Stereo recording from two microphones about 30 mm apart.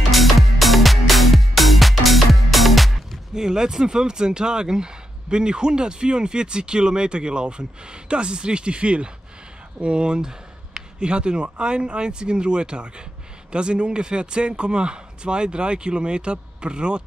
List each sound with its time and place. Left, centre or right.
0.1 s music: centre
3.3 s speech: right